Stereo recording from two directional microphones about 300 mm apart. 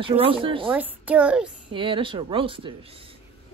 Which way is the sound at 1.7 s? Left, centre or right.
Centre.